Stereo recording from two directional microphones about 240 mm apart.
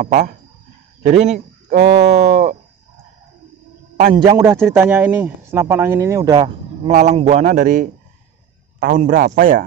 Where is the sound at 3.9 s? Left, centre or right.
Right.